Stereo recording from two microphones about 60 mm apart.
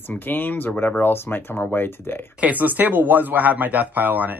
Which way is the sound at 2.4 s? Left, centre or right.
Right.